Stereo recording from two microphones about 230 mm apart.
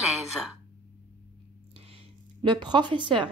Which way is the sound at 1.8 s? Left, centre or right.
Right.